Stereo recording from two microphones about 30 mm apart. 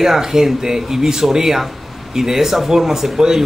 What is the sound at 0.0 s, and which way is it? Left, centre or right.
A man's voice, centre.